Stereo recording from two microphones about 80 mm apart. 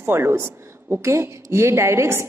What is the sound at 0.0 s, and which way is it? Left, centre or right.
A woman's voice, right.